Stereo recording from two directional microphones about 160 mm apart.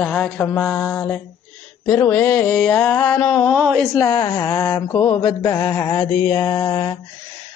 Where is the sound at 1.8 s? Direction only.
10° left (ahead or behind).